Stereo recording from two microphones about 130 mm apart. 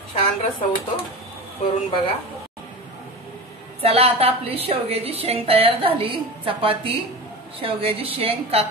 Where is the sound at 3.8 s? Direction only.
50° right (ahead or behind).